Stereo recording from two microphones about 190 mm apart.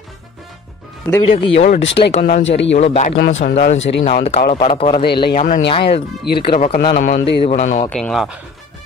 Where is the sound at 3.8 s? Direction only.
65° left (ahead or behind).